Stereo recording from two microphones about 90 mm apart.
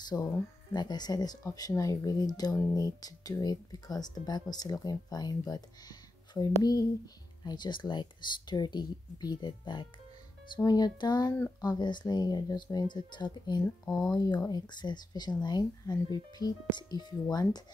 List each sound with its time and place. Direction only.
0.1 s speech: 40° left (ahead or behind)
7.4 s speech: 55° left (ahead or behind)
14.1 s speech: 45° left (ahead or behind)